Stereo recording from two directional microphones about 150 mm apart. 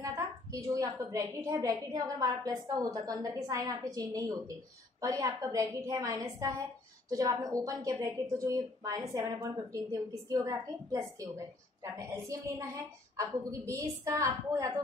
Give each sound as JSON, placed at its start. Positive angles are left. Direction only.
{"t": 0.0, "sound": "a woman's voice", "side_deg": -20}